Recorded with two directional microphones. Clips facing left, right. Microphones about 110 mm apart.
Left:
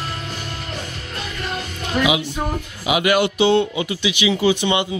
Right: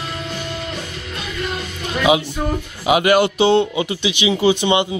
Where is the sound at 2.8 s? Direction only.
40° right (ahead or behind).